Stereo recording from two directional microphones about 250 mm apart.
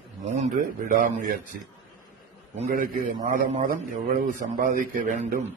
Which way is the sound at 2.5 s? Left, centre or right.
Right.